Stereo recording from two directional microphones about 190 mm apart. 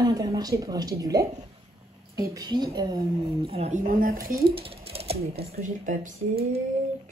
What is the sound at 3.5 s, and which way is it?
Speech, 35° right (ahead or behind).